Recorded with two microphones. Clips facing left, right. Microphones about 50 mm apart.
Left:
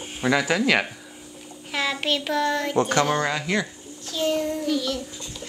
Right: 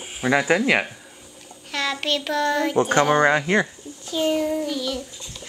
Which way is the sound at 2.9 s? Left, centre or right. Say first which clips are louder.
Right 5 dB; right.